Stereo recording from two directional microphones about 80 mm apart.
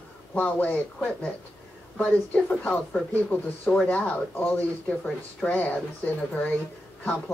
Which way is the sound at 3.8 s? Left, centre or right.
Centre.